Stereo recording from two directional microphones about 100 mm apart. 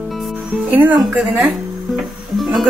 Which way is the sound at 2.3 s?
Centre (ahead or behind).